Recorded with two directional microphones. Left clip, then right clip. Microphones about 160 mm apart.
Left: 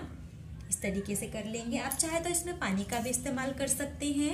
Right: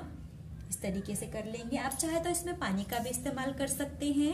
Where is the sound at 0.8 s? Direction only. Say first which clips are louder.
Left 2 dB; 25° right (ahead or behind).